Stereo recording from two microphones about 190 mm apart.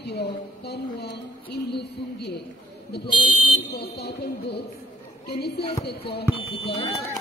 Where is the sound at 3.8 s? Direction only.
60° left (ahead or behind).